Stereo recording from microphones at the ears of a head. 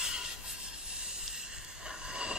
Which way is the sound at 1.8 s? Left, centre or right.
Centre.